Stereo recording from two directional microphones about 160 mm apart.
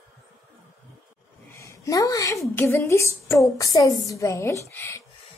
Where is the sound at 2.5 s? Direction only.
15° left (ahead or behind).